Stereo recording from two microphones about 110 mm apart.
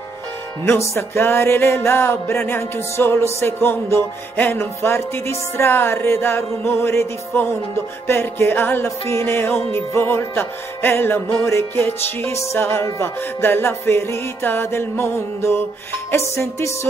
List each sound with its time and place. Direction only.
0.7 s music: 25° left (ahead or behind)